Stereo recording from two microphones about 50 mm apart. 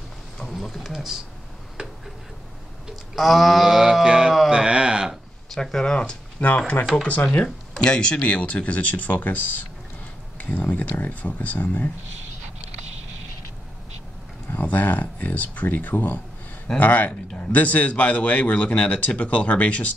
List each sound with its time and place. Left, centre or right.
0.5 s speech: centre
1.8 s tick-tock: centre
3.2 s a sound: centre
5.5 s a man's voice: centre; by 11.9 s left
14.5 s a man's voice: left